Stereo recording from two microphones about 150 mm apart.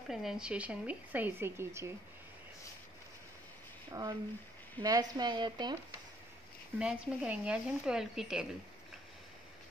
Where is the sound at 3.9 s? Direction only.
25° right (ahead or behind).